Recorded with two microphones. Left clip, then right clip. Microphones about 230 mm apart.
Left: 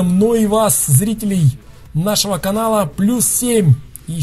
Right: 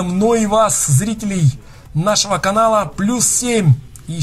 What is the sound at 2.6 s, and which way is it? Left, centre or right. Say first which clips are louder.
Speech: right 1 dB; left.